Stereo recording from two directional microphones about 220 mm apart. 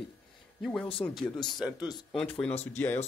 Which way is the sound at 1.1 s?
20° left (ahead or behind).